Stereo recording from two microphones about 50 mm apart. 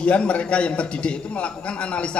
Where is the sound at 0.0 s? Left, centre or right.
Left.